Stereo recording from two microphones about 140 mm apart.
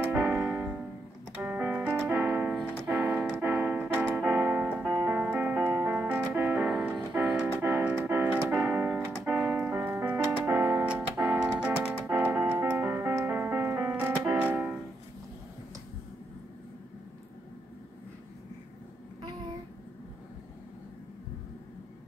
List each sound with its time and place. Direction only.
0.1 s keyboard: 10° right (ahead or behind)
1.3 s music: 15° right (ahead or behind)